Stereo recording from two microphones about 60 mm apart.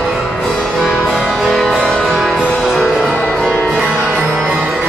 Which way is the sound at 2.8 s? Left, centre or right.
Centre.